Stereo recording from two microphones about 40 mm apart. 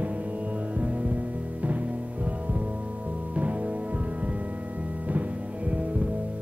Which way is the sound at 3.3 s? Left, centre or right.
Right.